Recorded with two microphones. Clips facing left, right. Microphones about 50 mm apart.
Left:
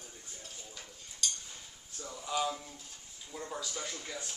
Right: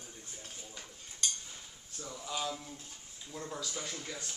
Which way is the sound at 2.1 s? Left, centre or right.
Centre.